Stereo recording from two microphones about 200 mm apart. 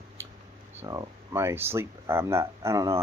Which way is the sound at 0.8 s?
15° right (ahead or behind).